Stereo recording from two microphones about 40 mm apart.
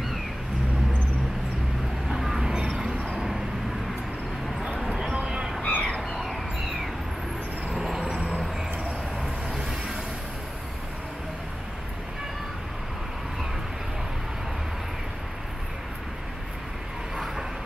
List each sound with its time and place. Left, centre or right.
2.0 s vehicle: centre
5.1 s a sound: right
5.6 s squawk: left
6.2 s a sound: centre
7.8 s vehicle: centre
8.1 s vehicle: right